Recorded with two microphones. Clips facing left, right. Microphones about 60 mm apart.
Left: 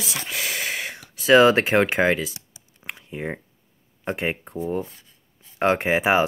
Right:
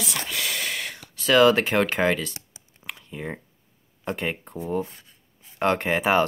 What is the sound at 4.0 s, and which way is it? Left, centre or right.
Speech, centre.